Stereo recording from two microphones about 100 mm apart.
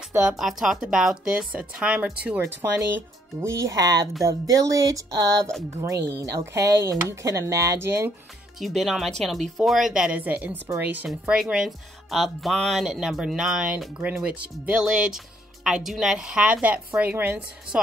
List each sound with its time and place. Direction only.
0.2 s speech: 5° right (ahead or behind)
2.6 s speech: 30° right (ahead or behind)
8.5 s speech: centre (ahead or behind); by 17.4 s 15° right (ahead or behind)